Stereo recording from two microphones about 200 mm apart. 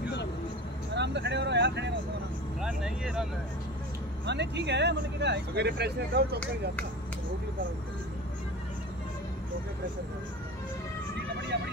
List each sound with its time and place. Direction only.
0.9 s vehicle: 60° right (ahead or behind)
2.6 s speech: 5° right (ahead or behind)
4.3 s speech: 60° right (ahead or behind)